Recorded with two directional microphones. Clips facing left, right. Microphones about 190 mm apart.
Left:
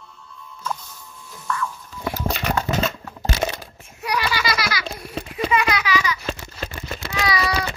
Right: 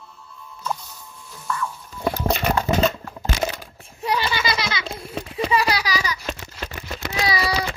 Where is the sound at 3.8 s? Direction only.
25° right (ahead or behind).